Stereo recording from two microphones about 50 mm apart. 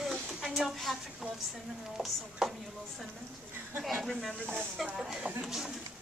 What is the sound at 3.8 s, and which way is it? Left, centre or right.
A woman's voice, centre.